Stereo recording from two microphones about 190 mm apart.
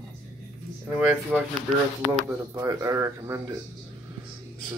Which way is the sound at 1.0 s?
Centre (ahead or behind).